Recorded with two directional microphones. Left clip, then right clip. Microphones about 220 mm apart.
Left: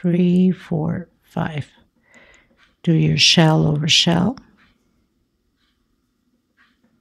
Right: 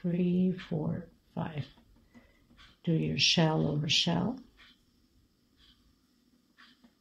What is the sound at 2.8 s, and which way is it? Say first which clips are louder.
Speech: left 13 dB; 50° left (ahead or behind).